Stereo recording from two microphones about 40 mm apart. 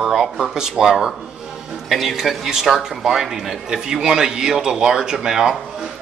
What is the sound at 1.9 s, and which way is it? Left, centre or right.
Speech, centre.